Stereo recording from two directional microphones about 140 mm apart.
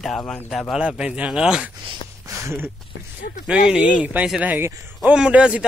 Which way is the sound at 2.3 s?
20° right (ahead or behind).